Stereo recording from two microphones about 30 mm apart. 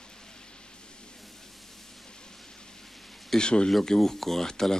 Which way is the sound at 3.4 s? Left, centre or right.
Left.